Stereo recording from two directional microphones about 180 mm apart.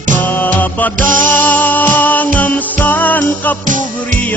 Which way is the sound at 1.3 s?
10° left (ahead or behind).